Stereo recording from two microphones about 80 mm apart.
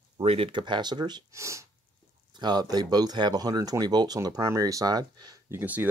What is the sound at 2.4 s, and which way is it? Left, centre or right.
Speech, right.